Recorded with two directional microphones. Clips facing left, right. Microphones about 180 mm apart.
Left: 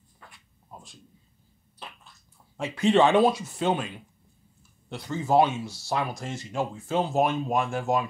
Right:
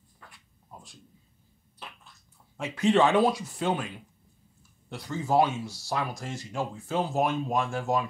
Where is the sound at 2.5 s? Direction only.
30° left (ahead or behind).